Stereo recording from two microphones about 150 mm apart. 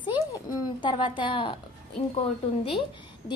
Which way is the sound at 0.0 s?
30° left (ahead or behind).